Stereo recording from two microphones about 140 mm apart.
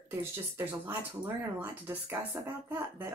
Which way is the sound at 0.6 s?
15° right (ahead or behind).